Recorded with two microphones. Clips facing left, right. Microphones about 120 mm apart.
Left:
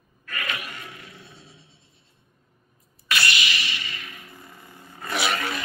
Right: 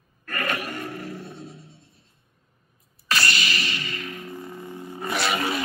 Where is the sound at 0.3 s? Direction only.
45° right (ahead or behind).